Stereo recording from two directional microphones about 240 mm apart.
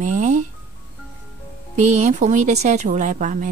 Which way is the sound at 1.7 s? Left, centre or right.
Right.